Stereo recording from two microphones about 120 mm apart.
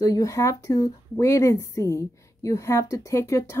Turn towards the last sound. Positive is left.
turn(degrees=25)  # may be behind; listen again after turning